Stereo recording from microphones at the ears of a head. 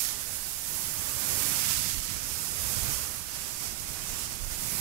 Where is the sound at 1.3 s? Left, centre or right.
Right.